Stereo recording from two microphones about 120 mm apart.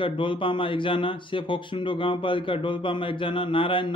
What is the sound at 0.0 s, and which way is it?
A man's voice, 45° left (ahead or behind).